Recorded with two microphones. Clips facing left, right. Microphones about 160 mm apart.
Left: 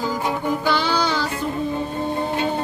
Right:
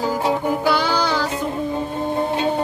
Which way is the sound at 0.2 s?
20° right (ahead or behind).